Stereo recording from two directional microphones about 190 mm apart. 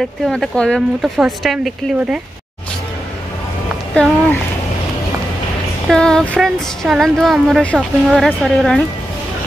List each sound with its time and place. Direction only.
0.3 s speech: 5° left (ahead or behind)
3.9 s speech: 5° left (ahead or behind)
5.9 s speech: 5° left (ahead or behind)